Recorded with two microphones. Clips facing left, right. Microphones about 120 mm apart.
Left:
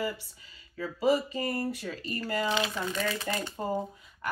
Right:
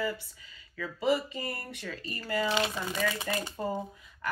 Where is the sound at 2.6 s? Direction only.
25° right (ahead or behind).